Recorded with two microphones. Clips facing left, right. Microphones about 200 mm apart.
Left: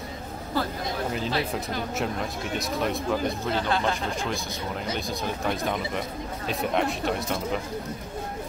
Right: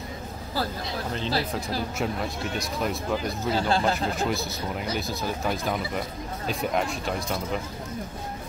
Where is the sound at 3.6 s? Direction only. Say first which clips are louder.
Right 3 dB; 30° right (ahead or behind).